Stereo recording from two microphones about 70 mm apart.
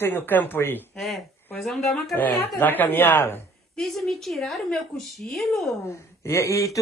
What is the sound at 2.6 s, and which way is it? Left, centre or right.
Speech, left.